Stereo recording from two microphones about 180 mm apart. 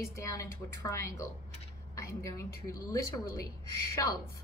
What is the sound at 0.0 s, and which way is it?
A woman's voice, 15° left (ahead or behind).